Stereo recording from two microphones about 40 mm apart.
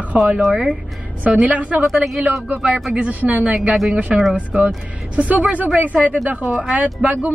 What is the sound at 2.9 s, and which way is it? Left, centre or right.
Speech, right.